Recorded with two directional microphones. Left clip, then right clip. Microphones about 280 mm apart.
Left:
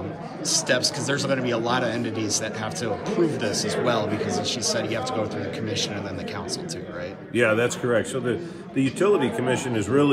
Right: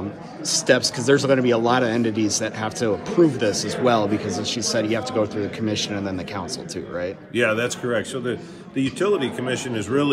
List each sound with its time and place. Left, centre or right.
0.5 s a man's voice: right
7.3 s a man's voice: centre